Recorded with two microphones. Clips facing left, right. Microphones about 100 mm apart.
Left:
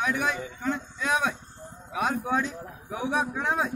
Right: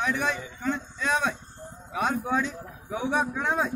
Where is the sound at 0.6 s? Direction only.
5° left (ahead or behind).